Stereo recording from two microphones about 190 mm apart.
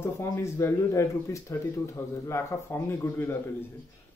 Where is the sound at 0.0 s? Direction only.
15° left (ahead or behind).